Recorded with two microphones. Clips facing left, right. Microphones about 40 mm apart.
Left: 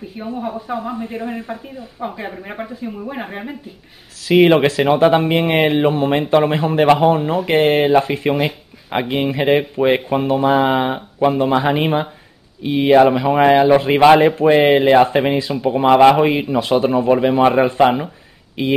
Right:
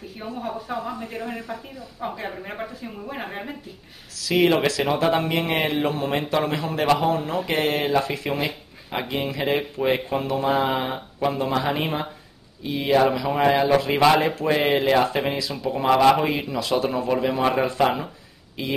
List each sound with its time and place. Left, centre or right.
0.2 s speech: centre; by 1.9 s left
2.2 s speech: centre
4.2 s speech: left